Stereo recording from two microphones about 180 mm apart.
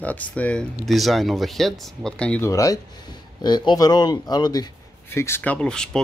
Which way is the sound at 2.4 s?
15° left (ahead or behind).